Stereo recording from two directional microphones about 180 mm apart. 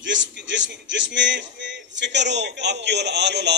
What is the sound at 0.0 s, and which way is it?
A man's voice, 85° right.